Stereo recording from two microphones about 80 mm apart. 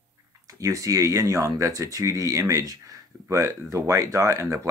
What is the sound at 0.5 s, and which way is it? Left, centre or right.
Speech, right.